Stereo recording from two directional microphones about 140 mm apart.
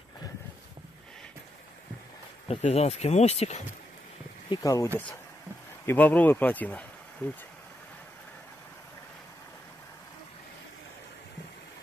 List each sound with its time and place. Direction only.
2.4 s speech: 50° left (ahead or behind)
4.5 s speech: 25° left (ahead or behind)
4.8 s speech: 15° left (ahead or behind)